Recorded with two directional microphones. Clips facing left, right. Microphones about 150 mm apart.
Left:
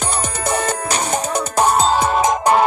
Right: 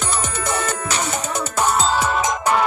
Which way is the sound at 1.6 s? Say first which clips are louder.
Left 4 dB; 35° left (ahead or behind).